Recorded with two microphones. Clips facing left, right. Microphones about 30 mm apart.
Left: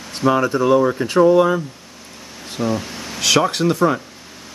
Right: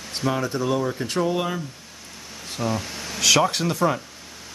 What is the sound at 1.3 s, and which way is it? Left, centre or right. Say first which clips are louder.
A man's voice: left 11 dB; centre.